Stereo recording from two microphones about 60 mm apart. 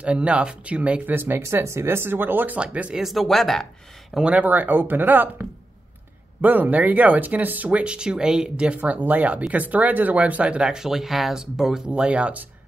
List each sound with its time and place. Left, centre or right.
0.0 s speech: centre
1.1 s speech: right
1.4 s speech: right
2.6 s speech: centre
3.0 s speech: centre
4.1 s speech: centre
7.8 s speech: centre
11.9 s speech: centre